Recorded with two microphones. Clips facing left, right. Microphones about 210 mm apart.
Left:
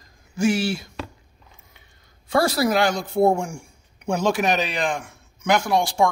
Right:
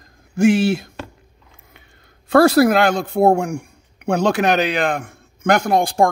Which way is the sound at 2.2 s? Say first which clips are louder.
Right 8 dB; 65° right (ahead or behind).